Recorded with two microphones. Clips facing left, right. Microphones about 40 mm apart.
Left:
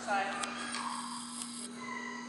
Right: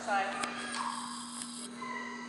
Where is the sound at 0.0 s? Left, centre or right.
Centre.